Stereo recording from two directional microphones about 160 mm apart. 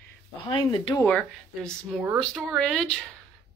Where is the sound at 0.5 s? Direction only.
30° left (ahead or behind).